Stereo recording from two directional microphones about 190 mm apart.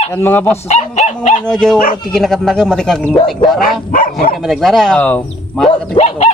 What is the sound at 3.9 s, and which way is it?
Speech, 45° left (ahead or behind).